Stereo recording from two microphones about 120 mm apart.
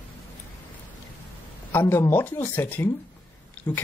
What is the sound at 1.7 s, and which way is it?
Speech, 20° left (ahead or behind).